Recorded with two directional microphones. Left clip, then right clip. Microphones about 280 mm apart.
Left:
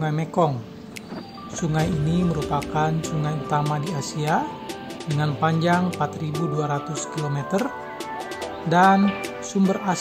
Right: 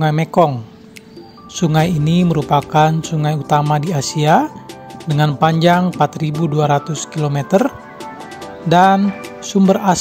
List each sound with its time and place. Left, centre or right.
0.0 s speech: right